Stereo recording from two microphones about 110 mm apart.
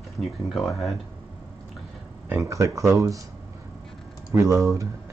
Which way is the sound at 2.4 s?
30° right (ahead or behind).